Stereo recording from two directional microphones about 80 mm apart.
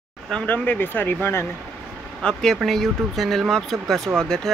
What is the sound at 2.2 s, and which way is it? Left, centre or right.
Speech, centre.